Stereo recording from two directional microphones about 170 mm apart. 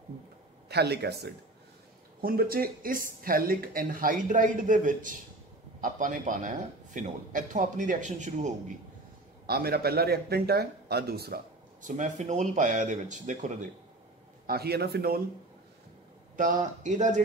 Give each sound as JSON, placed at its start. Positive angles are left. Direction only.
{"t": 0.7, "sound": "a man's voice", "side_deg": -75}
{"t": 2.2, "sound": "a man's voice", "side_deg": -60}
{"t": 9.5, "sound": "a man's voice", "side_deg": -65}
{"t": 11.8, "sound": "a man's voice", "side_deg": -45}
{"t": 14.4, "sound": "speech", "side_deg": -65}
{"t": 16.3, "sound": "a man's voice", "side_deg": -50}